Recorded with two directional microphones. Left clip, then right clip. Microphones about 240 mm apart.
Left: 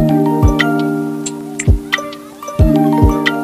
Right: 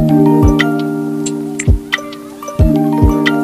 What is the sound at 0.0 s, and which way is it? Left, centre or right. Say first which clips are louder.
Music: right 3 dB; centre.